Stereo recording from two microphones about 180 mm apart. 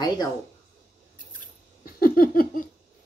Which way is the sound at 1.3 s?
55° left (ahead or behind).